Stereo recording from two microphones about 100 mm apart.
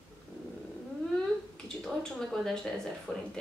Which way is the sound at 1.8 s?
5° left (ahead or behind).